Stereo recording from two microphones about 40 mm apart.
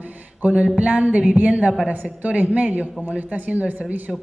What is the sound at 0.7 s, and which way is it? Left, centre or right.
Speech, right.